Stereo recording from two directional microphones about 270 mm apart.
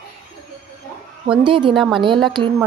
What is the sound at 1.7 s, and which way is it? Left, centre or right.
Speech, centre.